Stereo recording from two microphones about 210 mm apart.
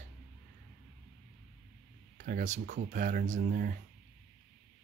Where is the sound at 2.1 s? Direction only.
40° right (ahead or behind).